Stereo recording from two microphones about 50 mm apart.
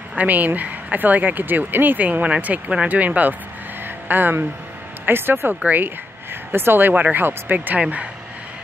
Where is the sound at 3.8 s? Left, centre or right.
Right.